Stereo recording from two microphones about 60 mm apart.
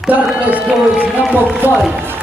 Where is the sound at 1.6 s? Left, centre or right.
Right.